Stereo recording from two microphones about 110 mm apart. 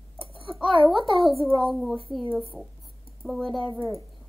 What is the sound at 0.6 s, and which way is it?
Speech, 50° right (ahead or behind).